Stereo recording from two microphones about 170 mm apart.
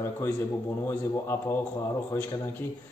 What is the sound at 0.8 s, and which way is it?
Speech, 15° left (ahead or behind).